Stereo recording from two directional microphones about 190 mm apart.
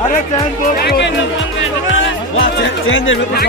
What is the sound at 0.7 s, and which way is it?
Speech, 55° left (ahead or behind).